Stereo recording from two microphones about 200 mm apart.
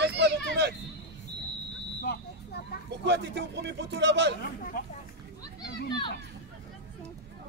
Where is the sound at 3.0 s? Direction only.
60° right (ahead or behind).